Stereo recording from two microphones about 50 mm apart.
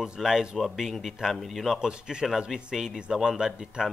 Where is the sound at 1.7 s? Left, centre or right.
Centre.